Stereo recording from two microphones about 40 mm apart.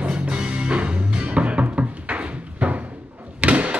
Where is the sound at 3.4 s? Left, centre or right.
Right.